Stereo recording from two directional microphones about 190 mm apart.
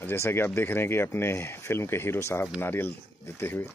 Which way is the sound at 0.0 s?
10° left (ahead or behind).